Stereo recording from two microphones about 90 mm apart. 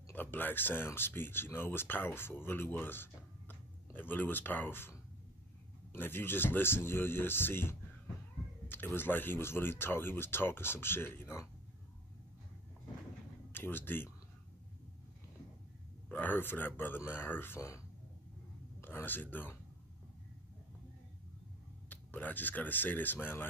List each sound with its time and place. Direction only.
0.1 s speech: 20° left (ahead or behind)
5.9 s speech: 25° left (ahead or behind)
13.5 s speech: 25° left (ahead or behind)
16.1 s speech: 20° left (ahead or behind)
21.8 s speech: 20° left (ahead or behind)